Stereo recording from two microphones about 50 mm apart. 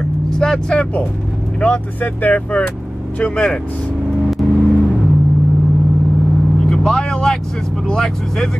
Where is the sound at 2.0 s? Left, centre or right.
Left.